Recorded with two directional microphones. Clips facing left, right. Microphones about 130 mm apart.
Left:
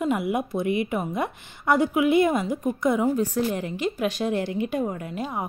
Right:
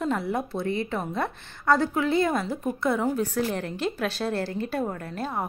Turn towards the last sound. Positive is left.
turn(degrees=10)  # may be behind; listen again after turning